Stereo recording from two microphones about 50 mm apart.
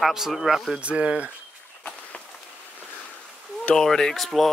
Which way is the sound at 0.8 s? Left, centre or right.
Right.